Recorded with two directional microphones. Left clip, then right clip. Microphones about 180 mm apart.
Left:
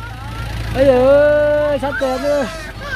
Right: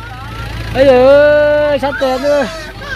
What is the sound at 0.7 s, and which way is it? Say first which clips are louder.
Speech: right 4 dB; 5° right (ahead or behind).